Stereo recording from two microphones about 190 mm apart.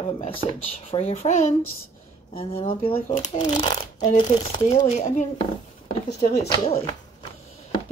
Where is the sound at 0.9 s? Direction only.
30° left (ahead or behind).